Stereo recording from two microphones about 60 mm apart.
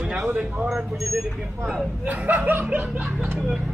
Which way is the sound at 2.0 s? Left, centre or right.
Right.